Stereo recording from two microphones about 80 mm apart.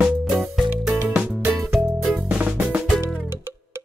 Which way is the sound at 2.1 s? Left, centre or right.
Centre.